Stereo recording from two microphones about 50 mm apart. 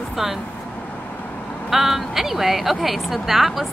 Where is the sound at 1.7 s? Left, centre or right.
Centre.